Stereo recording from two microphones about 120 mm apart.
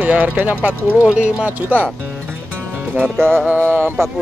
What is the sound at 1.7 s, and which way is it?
Music, 10° left (ahead or behind).